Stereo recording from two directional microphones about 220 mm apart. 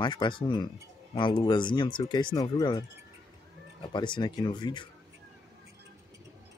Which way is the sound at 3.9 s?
20° left (ahead or behind).